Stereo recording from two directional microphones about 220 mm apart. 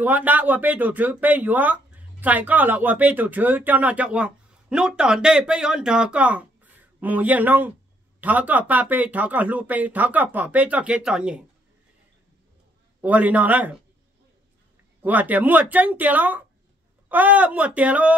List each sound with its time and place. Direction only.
0.0 s speech: 5° right (ahead or behind)
13.0 s speech: 5° right (ahead or behind)
15.0 s speech: 5° right (ahead or behind)